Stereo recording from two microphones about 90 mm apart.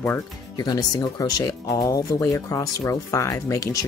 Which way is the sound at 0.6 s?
50° left (ahead or behind).